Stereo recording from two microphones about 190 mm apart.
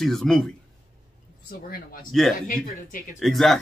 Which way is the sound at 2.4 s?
40° left (ahead or behind).